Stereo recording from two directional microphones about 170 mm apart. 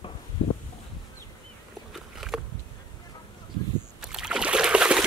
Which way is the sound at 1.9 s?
Centre (ahead or behind).